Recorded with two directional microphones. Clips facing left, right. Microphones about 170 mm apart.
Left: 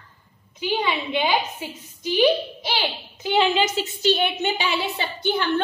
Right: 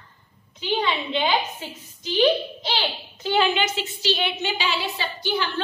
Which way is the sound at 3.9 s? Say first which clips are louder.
Left 5 dB; 50° left (ahead or behind).